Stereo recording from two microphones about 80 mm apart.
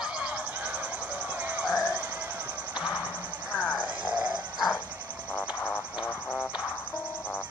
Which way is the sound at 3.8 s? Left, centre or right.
Centre.